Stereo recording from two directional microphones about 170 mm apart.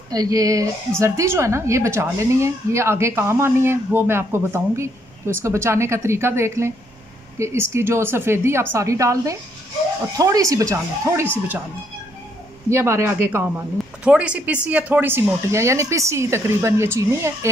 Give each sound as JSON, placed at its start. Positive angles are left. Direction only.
{"t": 0.1, "sound": "a woman's voice", "side_deg": -20}
{"t": 12.6, "sound": "a woman's voice", "side_deg": -15}